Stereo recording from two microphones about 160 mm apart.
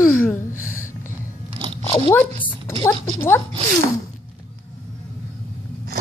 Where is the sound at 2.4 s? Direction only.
15° left (ahead or behind).